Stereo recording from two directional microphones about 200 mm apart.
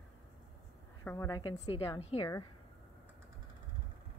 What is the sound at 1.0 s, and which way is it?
A woman's voice, 15° left (ahead or behind).